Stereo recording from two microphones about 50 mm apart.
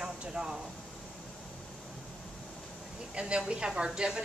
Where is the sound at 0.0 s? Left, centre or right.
Centre.